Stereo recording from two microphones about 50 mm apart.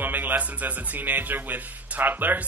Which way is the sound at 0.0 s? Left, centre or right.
Right.